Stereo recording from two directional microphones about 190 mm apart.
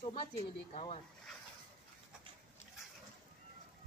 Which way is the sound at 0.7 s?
30° left (ahead or behind).